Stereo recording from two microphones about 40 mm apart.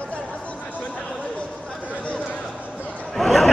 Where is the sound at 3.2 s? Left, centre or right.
Centre.